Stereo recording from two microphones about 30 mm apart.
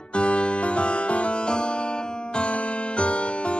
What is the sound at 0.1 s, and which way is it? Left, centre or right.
Music, left.